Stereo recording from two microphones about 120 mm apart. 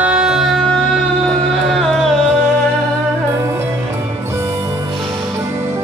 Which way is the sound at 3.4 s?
20° right (ahead or behind).